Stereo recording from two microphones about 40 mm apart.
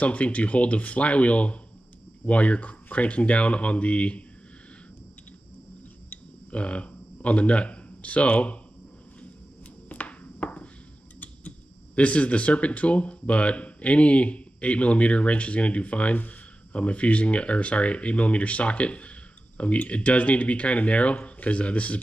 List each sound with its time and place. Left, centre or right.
0.0 s speech: left
6.5 s speech: left
9.8 s a sound: left
11.1 s speech: left